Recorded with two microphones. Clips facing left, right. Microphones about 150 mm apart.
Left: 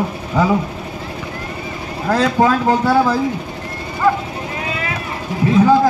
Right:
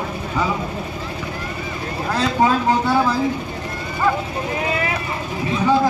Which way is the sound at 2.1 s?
70° left (ahead or behind).